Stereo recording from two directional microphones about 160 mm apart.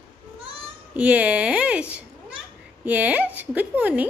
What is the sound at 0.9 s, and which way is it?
A woman's voice, 10° right (ahead or behind).